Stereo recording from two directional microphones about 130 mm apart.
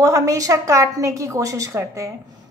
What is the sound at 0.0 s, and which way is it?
A woman's voice, 25° right (ahead or behind).